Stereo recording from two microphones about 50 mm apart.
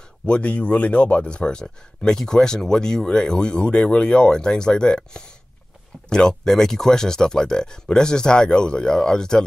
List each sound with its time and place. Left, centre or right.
0.3 s speech: left